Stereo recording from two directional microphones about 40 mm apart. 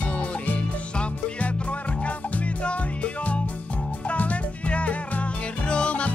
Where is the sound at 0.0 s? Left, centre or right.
Left.